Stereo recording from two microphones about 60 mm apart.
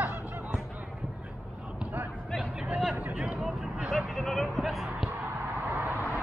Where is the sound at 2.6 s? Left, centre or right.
Centre.